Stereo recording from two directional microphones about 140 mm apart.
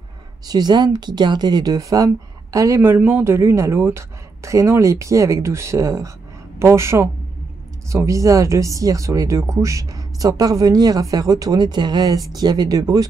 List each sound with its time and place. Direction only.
0.5 s speech: 30° right (ahead or behind)